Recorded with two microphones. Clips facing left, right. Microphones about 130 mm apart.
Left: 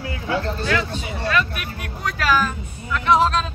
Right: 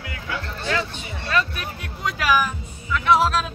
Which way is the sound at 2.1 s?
15° right (ahead or behind).